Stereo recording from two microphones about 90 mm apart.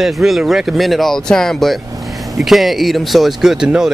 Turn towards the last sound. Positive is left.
turn(degrees=-5)  # may be behind; listen again after turning